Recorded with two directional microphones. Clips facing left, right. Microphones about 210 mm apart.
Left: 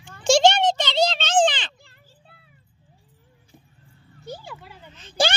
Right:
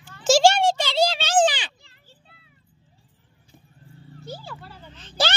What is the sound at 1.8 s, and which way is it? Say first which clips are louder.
Children playing: left 2 dB; 50° left (ahead or behind).